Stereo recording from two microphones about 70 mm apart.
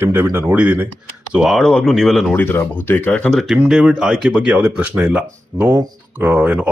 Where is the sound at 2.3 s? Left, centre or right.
Left.